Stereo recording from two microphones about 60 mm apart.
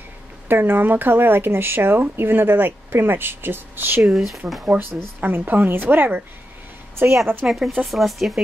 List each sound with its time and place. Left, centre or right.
0.5 s speech: right
4.0 s speech: centre
4.6 s speech: right
7.4 s speech: centre